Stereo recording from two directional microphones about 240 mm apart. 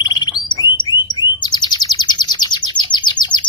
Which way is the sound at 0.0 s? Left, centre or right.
Centre.